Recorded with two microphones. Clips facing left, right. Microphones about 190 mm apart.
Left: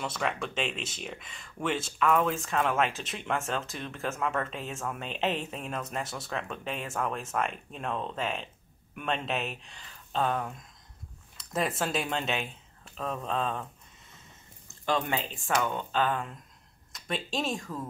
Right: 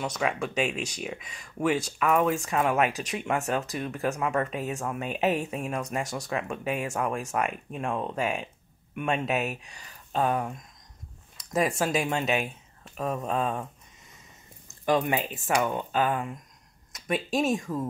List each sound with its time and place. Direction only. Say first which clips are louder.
0.0 s speech: right 3 dB; 5° right (ahead or behind)
5.9 s speech: right 4 dB; centre (ahead or behind)
11.5 s speech: right 4 dB; centre (ahead or behind)
14.7 s speech: right 5 dB; 15° right (ahead or behind)
16.9 s speech: right 6 dB; centre (ahead or behind)
17.6 s speech: right 6 dB; 20° right (ahead or behind)